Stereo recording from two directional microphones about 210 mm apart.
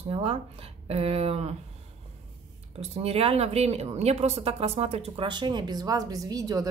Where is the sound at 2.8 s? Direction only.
30° right (ahead or behind).